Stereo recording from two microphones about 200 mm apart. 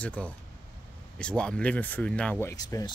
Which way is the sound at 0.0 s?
5° left (ahead or behind).